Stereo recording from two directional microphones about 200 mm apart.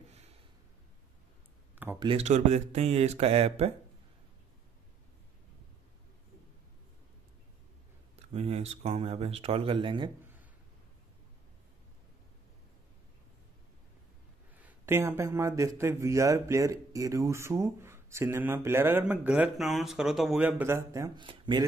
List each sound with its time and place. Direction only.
2.0 s speech: 30° right (ahead or behind)
8.3 s speech: 30° right (ahead or behind)
14.6 s speech: 10° right (ahead or behind)